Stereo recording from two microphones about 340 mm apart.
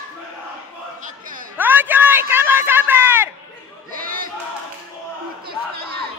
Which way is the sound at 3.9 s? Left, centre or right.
Right.